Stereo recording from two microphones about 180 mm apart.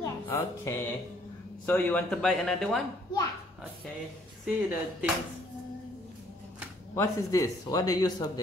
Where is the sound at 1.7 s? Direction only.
10° left (ahead or behind).